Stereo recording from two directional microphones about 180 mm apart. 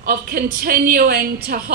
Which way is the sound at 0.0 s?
55° right (ahead or behind).